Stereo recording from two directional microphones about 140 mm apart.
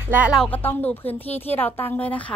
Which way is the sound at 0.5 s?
15° left (ahead or behind).